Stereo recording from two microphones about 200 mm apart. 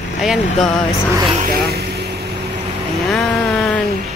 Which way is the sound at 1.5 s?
50° right (ahead or behind).